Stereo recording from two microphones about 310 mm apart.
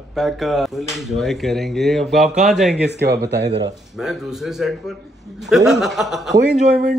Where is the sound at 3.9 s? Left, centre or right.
Centre.